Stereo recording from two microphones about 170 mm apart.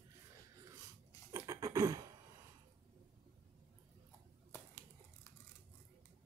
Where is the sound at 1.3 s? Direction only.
20° right (ahead or behind).